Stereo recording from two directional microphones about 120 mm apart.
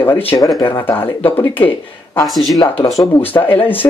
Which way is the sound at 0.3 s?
30° left (ahead or behind).